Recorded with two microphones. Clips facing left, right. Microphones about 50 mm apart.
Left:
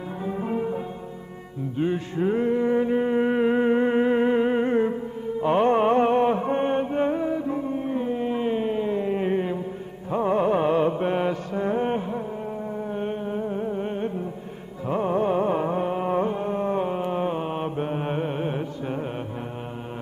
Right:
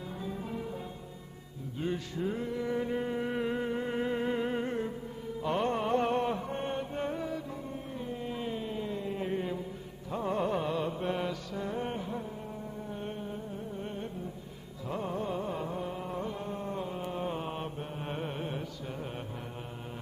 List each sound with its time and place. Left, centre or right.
0.2 s music: left
13.4 s music: left
14.9 s carnatic music: left
16.3 s mantra: left
17.7 s mantra: left
18.1 s carnatic music: left